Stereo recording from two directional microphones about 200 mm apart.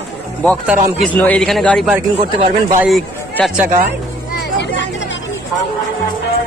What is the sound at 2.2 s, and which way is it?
Speech, 30° right (ahead or behind).